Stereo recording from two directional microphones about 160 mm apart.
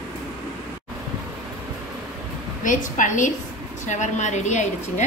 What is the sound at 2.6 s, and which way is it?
A woman's voice, 55° left (ahead or behind).